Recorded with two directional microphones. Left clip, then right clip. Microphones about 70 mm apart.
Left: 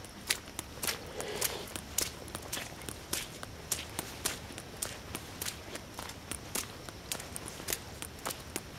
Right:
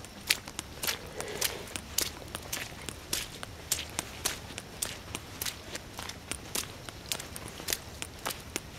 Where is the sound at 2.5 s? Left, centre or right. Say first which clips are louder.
Right 3 dB; centre.